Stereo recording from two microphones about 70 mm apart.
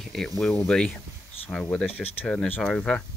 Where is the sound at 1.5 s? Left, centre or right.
Centre.